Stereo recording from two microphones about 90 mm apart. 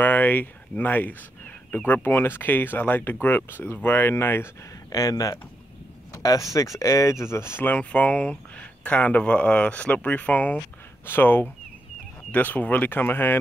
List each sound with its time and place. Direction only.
0.0 s speech: 20° left (ahead or behind)
4.9 s speech: 40° left (ahead or behind); by 13.4 s 25° left (ahead or behind)